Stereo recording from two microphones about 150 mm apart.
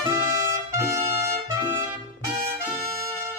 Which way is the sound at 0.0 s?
25° right (ahead or behind).